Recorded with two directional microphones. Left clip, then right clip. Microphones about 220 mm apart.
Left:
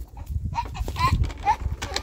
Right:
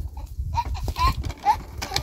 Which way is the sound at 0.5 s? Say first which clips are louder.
Right 2 dB; 30° right (ahead or behind).